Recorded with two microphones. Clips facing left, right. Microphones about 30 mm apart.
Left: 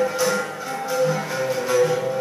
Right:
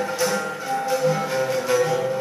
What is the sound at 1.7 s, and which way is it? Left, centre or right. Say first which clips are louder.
Music: left 2 dB; centre.